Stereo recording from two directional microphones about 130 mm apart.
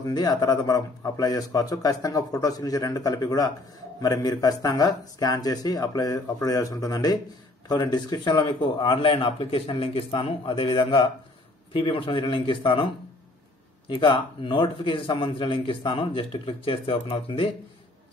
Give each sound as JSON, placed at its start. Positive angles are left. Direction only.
{"t": 0.0, "sound": "a man's voice", "side_deg": 30}
{"t": 13.8, "sound": "a man's voice", "side_deg": 40}